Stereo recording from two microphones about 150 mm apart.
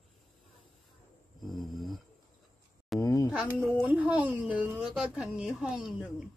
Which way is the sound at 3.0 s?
20° left (ahead or behind).